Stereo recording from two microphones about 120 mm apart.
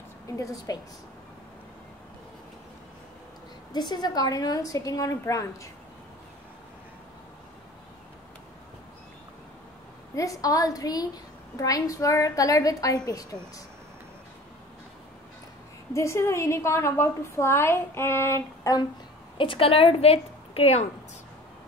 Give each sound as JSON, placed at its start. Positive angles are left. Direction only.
{"t": 0.4, "sound": "a woman's voice", "side_deg": 30}
{"t": 3.7, "sound": "a woman's voice", "side_deg": 35}
{"t": 10.1, "sound": "a woman's voice", "side_deg": 30}
{"t": 15.9, "sound": "a woman's voice", "side_deg": 25}
{"t": 19.3, "sound": "a woman's voice", "side_deg": 45}